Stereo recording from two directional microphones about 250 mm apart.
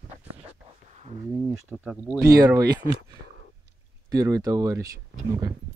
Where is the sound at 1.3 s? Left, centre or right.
Centre.